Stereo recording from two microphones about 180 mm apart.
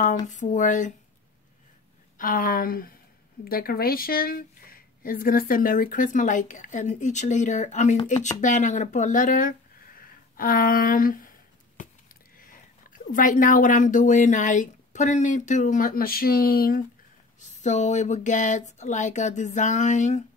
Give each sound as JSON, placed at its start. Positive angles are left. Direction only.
{"t": 0.3, "sound": "speech", "side_deg": 45}
{"t": 2.1, "sound": "speech", "side_deg": 50}
{"t": 10.0, "sound": "a sound", "side_deg": 50}
{"t": 12.9, "sound": "speech", "side_deg": 45}
{"t": 17.4, "sound": "speech", "side_deg": 40}